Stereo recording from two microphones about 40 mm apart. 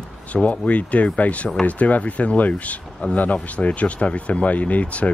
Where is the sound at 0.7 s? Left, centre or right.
Left.